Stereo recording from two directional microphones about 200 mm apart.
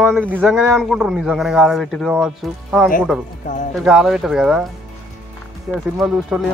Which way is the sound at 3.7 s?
Centre (ahead or behind).